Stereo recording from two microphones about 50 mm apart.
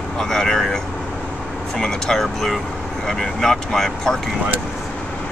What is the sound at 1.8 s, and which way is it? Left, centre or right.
Speech, centre.